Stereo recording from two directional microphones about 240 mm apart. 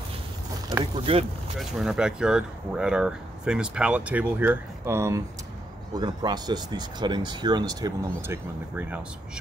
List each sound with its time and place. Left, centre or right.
0.7 s speech: right
1.6 s speech: centre